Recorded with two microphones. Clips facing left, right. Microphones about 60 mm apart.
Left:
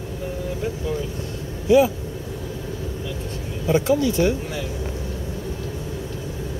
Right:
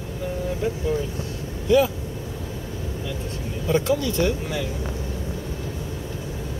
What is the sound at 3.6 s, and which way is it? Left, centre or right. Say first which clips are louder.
Speech: left 3 dB; centre.